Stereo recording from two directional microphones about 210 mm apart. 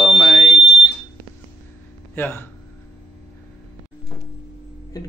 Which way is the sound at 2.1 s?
10° left (ahead or behind).